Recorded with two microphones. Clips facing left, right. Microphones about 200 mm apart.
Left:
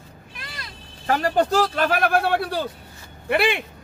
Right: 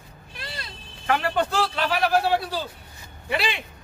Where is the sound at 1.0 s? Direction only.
40° left (ahead or behind); by 3.6 s 55° left (ahead or behind).